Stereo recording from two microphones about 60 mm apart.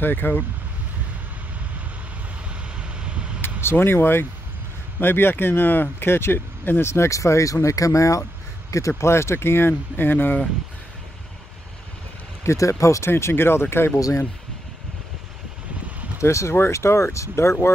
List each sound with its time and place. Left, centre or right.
0.0 s speech: left
2.8 s vehicle: centre
3.8 s speech: left
6.9 s speech: left
12.4 s speech: left
13.9 s speech: left
16.2 s speech: left